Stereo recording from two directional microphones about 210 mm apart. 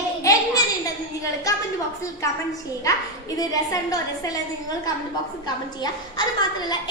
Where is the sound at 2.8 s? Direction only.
15° left (ahead or behind).